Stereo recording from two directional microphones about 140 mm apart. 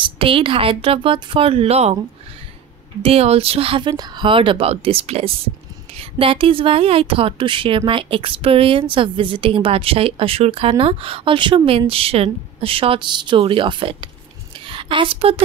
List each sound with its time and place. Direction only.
0.0 s speech: 40° right (ahead or behind)
3.0 s a woman's voice: 45° right (ahead or behind)